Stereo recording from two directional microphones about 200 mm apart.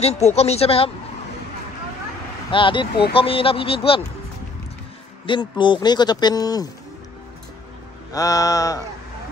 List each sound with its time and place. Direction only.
0.0 s speech: 35° left (ahead or behind)
2.5 s speech: 25° left (ahead or behind)
5.2 s speech: 25° left (ahead or behind)
8.1 s mantra: 15° left (ahead or behind)